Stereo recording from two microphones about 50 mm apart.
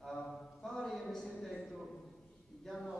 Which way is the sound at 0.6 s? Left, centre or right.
Centre.